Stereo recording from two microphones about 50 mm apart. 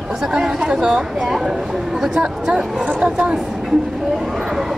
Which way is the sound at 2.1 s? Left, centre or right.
Centre.